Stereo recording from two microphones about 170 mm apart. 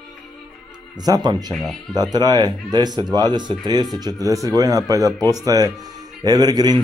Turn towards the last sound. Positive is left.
turn(degrees=-25)  # may be behind; listen again after turning